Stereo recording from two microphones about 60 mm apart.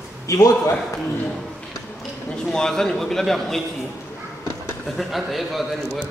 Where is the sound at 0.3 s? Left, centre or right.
Left.